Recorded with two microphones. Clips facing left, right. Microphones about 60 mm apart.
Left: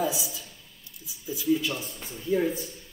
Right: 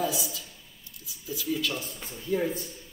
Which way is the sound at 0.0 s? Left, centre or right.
Centre.